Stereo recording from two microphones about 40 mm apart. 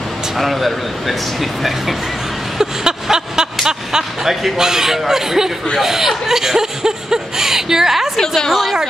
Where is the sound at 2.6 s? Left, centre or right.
Centre.